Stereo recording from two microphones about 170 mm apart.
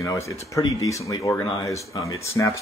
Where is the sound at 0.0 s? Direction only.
20° left (ahead or behind).